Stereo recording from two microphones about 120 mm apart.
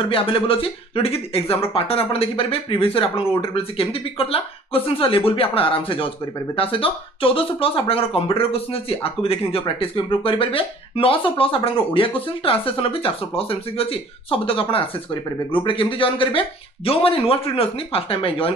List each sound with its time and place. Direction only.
0.0 s speech: 50° left (ahead or behind)